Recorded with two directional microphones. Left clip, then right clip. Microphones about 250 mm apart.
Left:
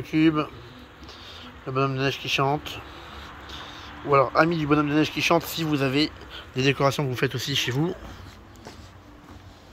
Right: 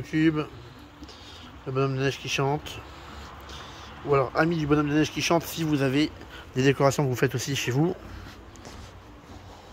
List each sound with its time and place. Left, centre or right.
0.0 s speech: centre
4.1 s speech: centre
5.0 s speech: right
5.7 s speech: centre